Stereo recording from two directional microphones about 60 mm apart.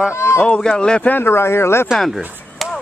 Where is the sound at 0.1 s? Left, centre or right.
Left.